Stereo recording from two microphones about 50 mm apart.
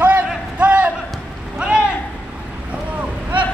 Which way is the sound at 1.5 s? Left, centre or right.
Centre.